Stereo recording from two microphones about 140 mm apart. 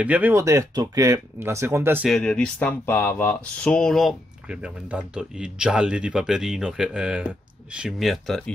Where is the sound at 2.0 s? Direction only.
5° left (ahead or behind).